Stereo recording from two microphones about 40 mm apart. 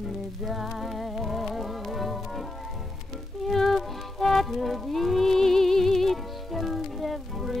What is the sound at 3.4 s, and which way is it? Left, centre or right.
Music, centre.